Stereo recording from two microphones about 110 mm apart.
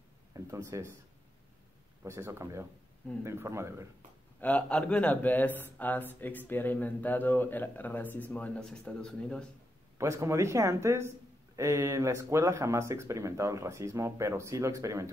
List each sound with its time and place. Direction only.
0.3 s speech: 25° right (ahead or behind)
2.0 s speech: 25° right (ahead or behind)
4.4 s speech: 15° left (ahead or behind)
9.9 s speech: 25° right (ahead or behind)